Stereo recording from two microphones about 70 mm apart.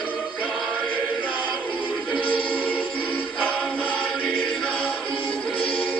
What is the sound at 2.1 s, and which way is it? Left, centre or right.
Music, centre.